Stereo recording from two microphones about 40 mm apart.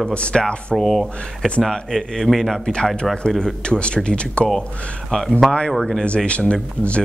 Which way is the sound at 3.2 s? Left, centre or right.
Centre.